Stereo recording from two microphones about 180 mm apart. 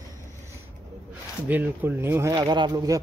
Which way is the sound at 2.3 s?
25° right (ahead or behind).